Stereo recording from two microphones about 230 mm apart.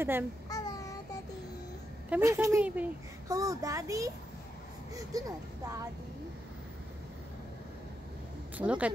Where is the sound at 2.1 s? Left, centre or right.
Centre.